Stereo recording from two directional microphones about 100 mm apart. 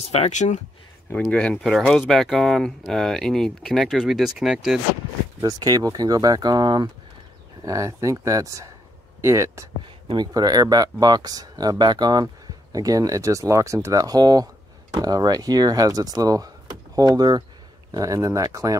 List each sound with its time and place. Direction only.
0.0 s speech: 90° left
1.3 s speech: 10° left (ahead or behind)
5.4 s speech: 40° right (ahead or behind)
7.6 s speech: 35° right (ahead or behind)
10.1 s speech: 40° right (ahead or behind)